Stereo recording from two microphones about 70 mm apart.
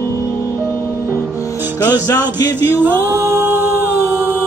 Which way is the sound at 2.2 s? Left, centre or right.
Right.